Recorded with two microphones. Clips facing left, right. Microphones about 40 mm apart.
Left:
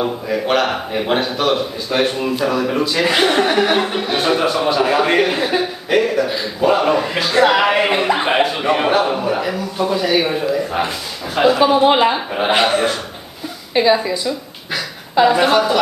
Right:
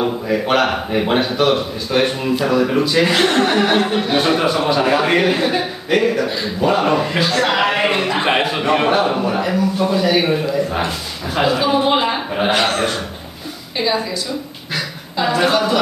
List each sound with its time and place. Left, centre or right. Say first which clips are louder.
0.0 s a man's voice: right 1 dB; centre
3.2 s speech: even; centre
3.5 s a man's voice: even; centre
8.3 s a man's voice: even; centre
11.6 s a woman's voice: left 3 dB; centre
15.2 s a man's voice: left 1 dB; centre